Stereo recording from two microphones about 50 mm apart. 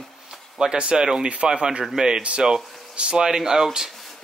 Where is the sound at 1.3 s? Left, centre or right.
Right.